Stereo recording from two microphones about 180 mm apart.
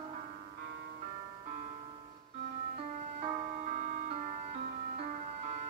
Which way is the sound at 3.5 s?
40° right (ahead or behind).